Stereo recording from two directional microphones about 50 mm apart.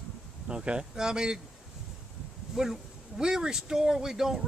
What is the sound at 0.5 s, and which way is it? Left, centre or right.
Speech, centre.